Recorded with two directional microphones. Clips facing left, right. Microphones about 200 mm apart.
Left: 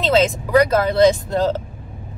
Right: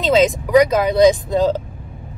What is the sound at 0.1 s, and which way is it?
Speech, 15° right (ahead or behind).